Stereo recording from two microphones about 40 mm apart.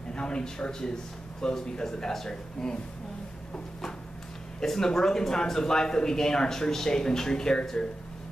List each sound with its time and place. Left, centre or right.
0.1 s speech: left
4.6 s speech: centre